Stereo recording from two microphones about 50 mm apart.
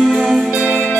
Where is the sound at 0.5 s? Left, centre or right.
Right.